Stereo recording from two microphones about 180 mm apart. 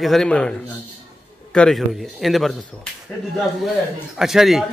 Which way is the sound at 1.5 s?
5° left (ahead or behind).